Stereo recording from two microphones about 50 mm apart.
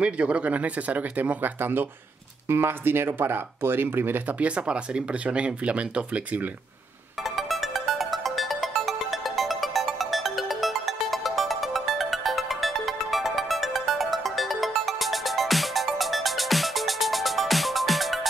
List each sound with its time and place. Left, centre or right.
0.0 s speech: right
4.4 s speech: right
7.2 s music: centre